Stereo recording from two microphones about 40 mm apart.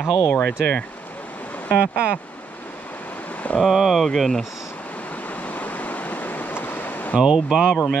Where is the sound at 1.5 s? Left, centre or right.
Left.